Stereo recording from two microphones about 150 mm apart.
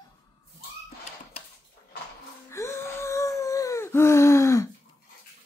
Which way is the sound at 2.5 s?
20° left (ahead or behind).